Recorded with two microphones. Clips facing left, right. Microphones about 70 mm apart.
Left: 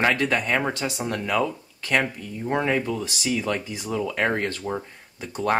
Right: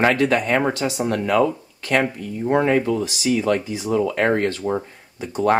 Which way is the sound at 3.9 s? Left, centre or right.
Right.